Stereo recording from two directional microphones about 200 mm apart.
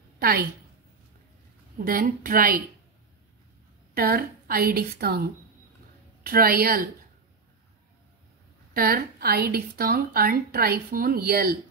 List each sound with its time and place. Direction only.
0.2 s a woman's voice: 50° right (ahead or behind)
1.9 s a woman's voice: 45° right (ahead or behind)
3.9 s a woman's voice: 50° right (ahead or behind)
6.2 s a woman's voice: 50° right (ahead or behind)
8.7 s a woman's voice: 50° right (ahead or behind)